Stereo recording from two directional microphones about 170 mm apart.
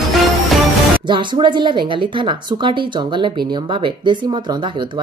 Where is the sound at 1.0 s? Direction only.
25° right (ahead or behind).